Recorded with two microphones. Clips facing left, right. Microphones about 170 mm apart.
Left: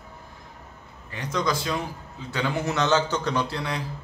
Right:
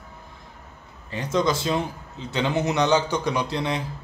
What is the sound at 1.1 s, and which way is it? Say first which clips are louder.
A man's voice: right 4 dB; 25° right (ahead or behind).